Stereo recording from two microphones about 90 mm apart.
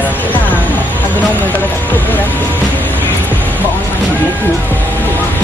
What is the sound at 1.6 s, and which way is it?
Speech, 20° left (ahead or behind).